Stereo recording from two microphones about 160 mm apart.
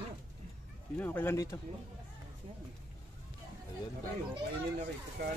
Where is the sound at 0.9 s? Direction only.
10° left (ahead or behind).